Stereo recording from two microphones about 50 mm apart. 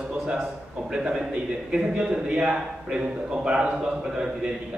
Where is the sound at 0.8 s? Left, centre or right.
Centre.